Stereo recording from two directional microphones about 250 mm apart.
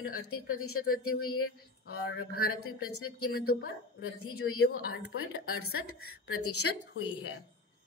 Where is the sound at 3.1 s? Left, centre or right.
Left.